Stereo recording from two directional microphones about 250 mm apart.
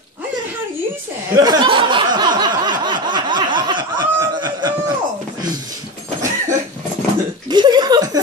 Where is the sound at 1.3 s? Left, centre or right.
Centre.